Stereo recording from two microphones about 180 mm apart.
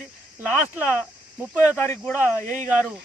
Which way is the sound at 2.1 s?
10° right (ahead or behind).